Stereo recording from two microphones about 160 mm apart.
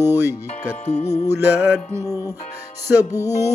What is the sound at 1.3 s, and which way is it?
Music, 15° right (ahead or behind).